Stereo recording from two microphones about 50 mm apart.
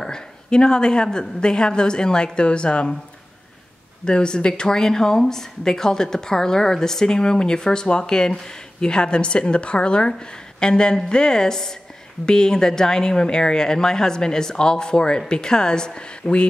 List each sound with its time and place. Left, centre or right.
0.0 s speech: centre
4.0 s a woman's voice: centre